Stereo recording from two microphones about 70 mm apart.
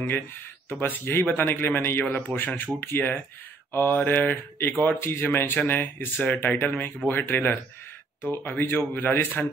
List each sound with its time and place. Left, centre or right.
0.7 s speech: left
3.7 s mantra: left
4.8 s speech: left